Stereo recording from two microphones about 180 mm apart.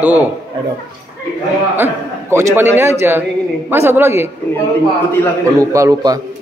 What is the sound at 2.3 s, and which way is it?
Speech, 15° right (ahead or behind).